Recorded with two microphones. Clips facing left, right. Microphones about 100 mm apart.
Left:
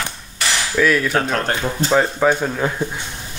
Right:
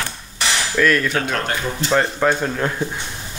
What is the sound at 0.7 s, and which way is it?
Cutlery, 5° left (ahead or behind).